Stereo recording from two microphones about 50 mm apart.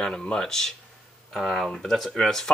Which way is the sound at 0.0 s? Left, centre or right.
Centre.